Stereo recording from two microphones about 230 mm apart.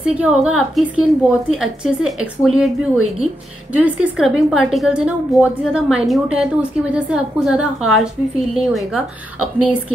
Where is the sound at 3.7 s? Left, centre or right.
Centre.